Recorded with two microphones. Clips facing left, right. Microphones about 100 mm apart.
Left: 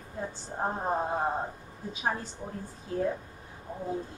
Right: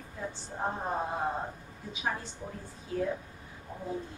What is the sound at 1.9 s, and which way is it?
Speech, 40° left (ahead or behind).